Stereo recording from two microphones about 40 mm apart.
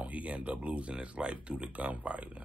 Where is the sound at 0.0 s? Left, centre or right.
Right.